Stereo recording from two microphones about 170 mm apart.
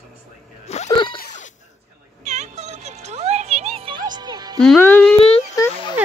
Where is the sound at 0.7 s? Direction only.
40° left (ahead or behind).